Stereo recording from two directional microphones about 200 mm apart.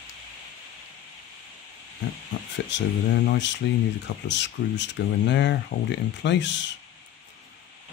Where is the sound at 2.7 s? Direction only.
65° left (ahead or behind).